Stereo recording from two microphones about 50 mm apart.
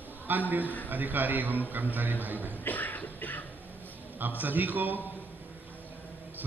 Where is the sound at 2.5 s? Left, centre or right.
Left.